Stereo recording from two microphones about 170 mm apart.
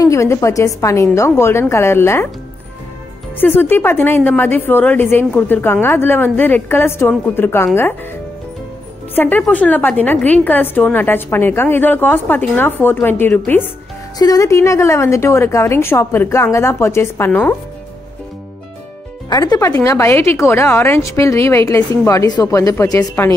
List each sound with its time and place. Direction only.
0.0 s a woman's voice: 15° left (ahead or behind)
3.3 s a woman's voice: 10° left (ahead or behind)
9.1 s a woman's voice: 10° left (ahead or behind)
14.1 s a woman's voice: 20° left (ahead or behind)
19.2 s a woman's voice: 25° left (ahead or behind)